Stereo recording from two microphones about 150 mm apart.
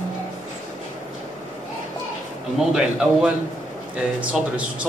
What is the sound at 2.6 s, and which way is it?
A man's voice, 5° right (ahead or behind).